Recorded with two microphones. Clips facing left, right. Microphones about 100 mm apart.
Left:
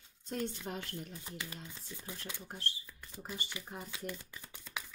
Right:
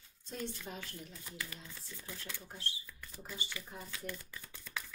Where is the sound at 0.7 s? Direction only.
55° left (ahead or behind).